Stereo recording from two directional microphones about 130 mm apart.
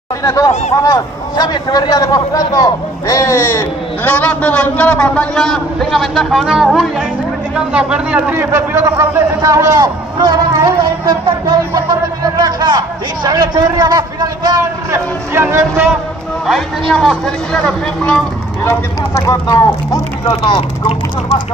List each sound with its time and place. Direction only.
0.2 s a man's voice: 25° left (ahead or behind); by 15.0 s 30° right (ahead or behind)
15.3 s a man's voice: 20° right (ahead or behind)
16.9 s a man's voice: 5° left (ahead or behind)
18.6 s speech: 20° left (ahead or behind)
20.2 s speech: 35° left (ahead or behind)